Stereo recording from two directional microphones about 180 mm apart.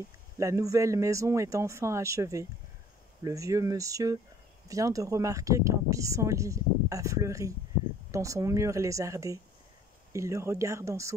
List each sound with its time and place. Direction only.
0.4 s speech: 15° right (ahead or behind)